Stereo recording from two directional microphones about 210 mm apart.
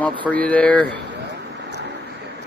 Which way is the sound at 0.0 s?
5° left (ahead or behind).